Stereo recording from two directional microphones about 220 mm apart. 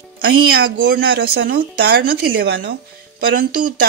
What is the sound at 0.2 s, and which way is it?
Speech, 45° right (ahead or behind).